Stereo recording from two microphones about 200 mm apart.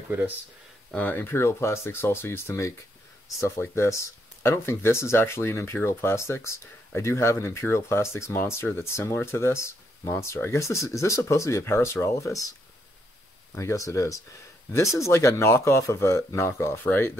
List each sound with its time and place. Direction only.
0.9 s speech: 10° left (ahead or behind)
13.6 s speech: 15° left (ahead or behind)